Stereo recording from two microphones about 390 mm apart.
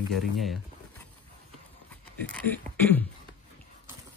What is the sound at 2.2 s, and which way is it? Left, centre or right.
Speech, centre.